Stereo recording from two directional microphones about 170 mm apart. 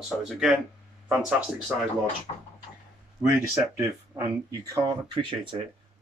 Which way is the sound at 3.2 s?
15° right (ahead or behind).